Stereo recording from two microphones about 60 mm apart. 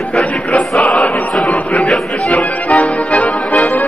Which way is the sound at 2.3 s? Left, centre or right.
Left.